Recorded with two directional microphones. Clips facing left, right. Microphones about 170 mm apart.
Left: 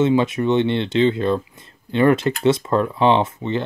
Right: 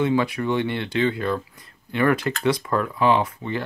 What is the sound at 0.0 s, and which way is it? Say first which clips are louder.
Speech: left 4 dB; 20° left (ahead or behind).